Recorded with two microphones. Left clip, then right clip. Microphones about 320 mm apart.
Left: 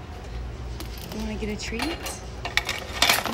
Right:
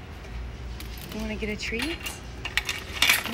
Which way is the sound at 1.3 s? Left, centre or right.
Centre.